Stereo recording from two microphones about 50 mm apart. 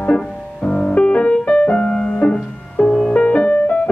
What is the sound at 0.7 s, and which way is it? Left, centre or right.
Music, left.